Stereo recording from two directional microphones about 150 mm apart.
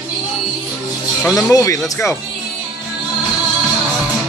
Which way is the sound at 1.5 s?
20° left (ahead or behind).